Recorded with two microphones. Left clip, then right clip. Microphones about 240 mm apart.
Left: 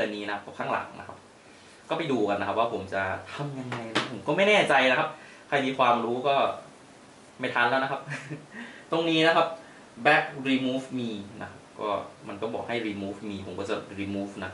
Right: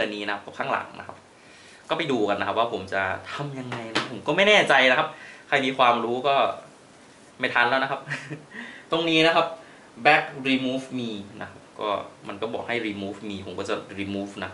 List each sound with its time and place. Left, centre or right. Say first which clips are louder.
0.0 s speech: right 3 dB; centre